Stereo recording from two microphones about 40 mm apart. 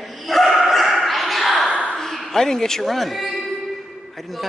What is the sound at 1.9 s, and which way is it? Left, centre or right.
A man's voice, centre.